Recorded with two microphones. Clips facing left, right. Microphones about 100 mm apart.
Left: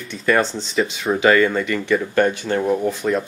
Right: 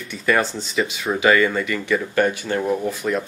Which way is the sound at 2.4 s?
20° left (ahead or behind).